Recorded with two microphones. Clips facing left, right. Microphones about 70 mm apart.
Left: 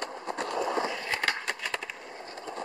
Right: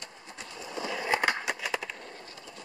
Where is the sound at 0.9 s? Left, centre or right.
Centre.